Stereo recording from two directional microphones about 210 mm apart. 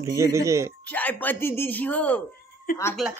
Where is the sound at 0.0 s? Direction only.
15° right (ahead or behind).